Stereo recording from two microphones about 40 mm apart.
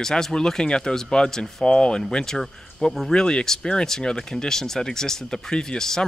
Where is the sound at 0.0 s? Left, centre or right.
Centre.